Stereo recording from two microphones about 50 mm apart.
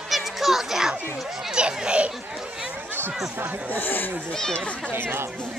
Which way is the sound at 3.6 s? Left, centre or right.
Left.